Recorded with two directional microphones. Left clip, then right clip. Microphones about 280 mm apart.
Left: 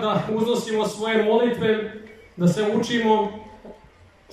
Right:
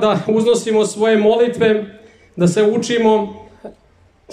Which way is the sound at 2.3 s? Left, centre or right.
Right.